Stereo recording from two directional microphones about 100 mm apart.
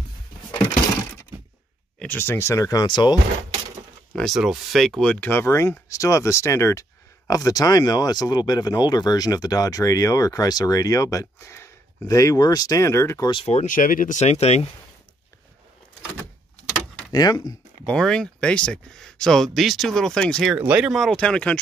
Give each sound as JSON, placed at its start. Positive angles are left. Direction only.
{"t": 2.0, "sound": "speech", "side_deg": 15}
{"t": 4.1, "sound": "a sound", "side_deg": 5}
{"t": 4.4, "sound": "speech", "side_deg": 0}
{"t": 5.0, "sound": "speech", "side_deg": 10}
{"t": 5.3, "sound": "speech", "side_deg": 25}
{"t": 13.3, "sound": "speech", "side_deg": 75}
{"t": 14.2, "sound": "speech", "side_deg": 90}
{"t": 17.1, "sound": "speech", "side_deg": 40}
{"t": 17.8, "sound": "speech", "side_deg": 5}
{"t": 20.5, "sound": "speech", "side_deg": -15}
{"t": 20.9, "sound": "speech", "side_deg": 0}